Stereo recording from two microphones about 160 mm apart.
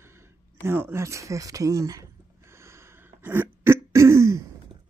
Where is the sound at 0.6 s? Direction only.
15° right (ahead or behind).